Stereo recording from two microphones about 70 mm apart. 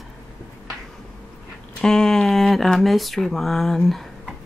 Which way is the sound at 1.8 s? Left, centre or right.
Centre.